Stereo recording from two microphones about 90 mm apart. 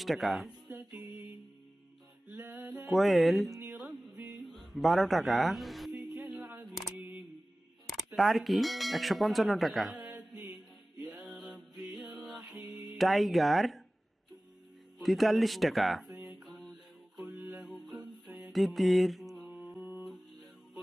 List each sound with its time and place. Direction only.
0.0 s speech: centre (ahead or behind)
0.7 s music: 20° right (ahead or behind)
2.2 s a sound: 20° right (ahead or behind)
2.9 s speech: centre (ahead or behind)
3.7 s music: 5° right (ahead or behind)
4.5 s a sound: centre (ahead or behind)
5.9 s music: 10° right (ahead or behind)
7.8 s speech: centre (ahead or behind)
10.0 s mantra: 15° right (ahead or behind)
11.1 s music: 5° right (ahead or behind)
15.0 s speech: centre (ahead or behind)
17.2 s music: 5° right (ahead or behind)
18.5 s mantra: centre (ahead or behind)
19.8 s music: 10° right (ahead or behind)